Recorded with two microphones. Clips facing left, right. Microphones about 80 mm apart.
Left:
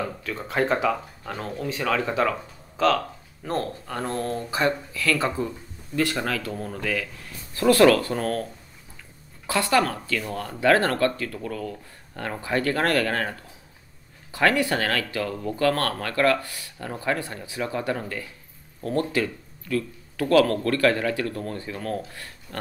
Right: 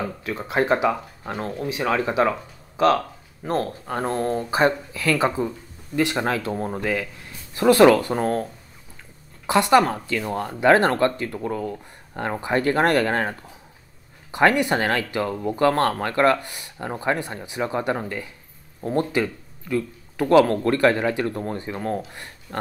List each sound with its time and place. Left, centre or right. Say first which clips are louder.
0.4 s speech: right 3 dB; centre
3.8 s speech: right 4 dB; right
9.5 s speech: right 5 dB; right